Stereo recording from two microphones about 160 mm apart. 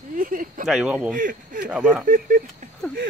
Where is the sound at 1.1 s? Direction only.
60° right (ahead or behind).